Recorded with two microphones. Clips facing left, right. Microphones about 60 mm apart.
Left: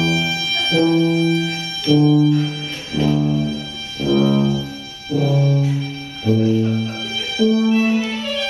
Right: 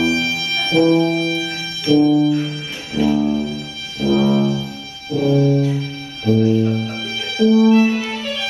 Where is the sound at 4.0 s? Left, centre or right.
Centre.